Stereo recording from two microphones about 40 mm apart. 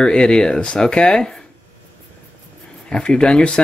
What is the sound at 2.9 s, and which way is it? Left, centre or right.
Speech, left.